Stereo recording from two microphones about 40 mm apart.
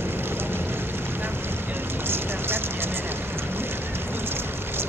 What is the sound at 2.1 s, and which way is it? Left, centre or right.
Vehicle, right.